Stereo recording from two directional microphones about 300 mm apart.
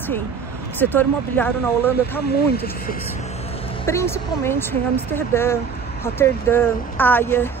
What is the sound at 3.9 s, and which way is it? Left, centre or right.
Speech, centre.